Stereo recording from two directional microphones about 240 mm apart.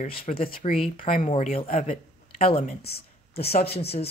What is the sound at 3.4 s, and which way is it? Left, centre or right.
Speech, left.